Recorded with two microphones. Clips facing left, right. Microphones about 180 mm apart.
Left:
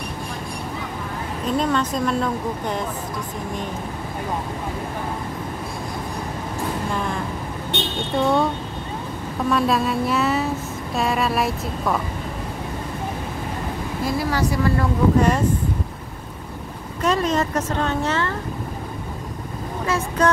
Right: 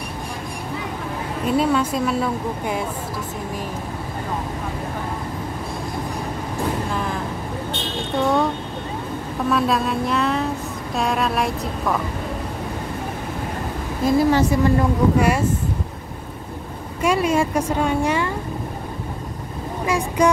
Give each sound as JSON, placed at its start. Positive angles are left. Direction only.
{"t": 1.5, "sound": "a woman's voice", "side_deg": -10}
{"t": 7.7, "sound": "a sound", "side_deg": 70}
{"t": 9.5, "sound": "vehicle", "side_deg": 0}
{"t": 14.0, "sound": "speech", "side_deg": -20}
{"t": 17.0, "sound": "a woman's voice", "side_deg": -10}
{"t": 20.2, "sound": "a woman's voice", "side_deg": -15}